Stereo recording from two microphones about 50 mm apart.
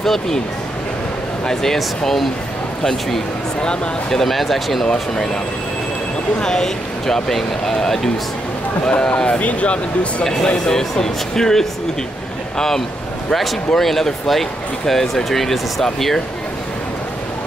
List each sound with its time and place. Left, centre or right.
0.0 s speech: centre
1.5 s speech: centre
6.4 s speech: centre
8.8 s speech: centre
10.2 s speech: centre